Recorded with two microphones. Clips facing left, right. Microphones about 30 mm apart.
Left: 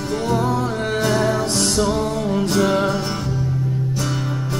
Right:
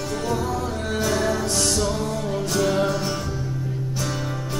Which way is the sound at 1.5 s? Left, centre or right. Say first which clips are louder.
Left 4 dB; centre.